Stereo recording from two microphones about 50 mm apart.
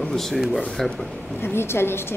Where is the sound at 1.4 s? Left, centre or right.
Left.